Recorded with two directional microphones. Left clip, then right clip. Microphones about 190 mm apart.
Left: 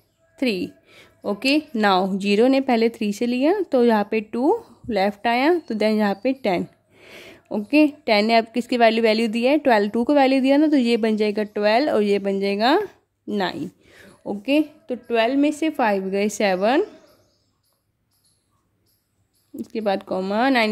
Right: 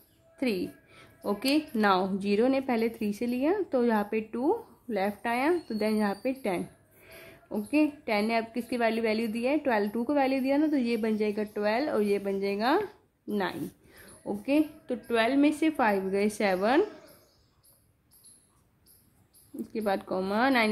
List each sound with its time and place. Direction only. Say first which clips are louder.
0.4 s a woman's voice: left 7 dB; 40° left (ahead or behind)
19.5 s a woman's voice: left 7 dB; 40° left (ahead or behind)